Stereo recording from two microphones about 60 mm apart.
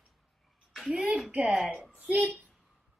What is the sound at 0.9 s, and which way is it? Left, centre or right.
Speech, centre.